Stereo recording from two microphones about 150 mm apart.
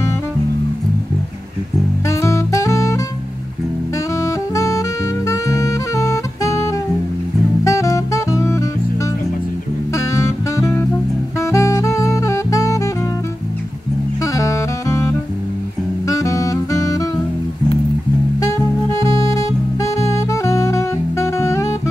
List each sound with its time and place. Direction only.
2.0 s music: 20° left (ahead or behind)
4.1 s saxophone: 20° left (ahead or behind)
7.6 s music: 20° left (ahead or behind)
9.9 s music: 20° left (ahead or behind)
11.3 s saxophone: 20° left (ahead or behind)
14.2 s saxophone: 20° left (ahead or behind)
18.4 s music: 25° left (ahead or behind)